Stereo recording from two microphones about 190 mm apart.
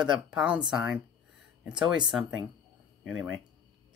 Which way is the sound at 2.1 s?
Centre (ahead or behind).